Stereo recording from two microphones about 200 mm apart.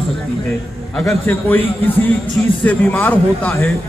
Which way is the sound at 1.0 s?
10° left (ahead or behind).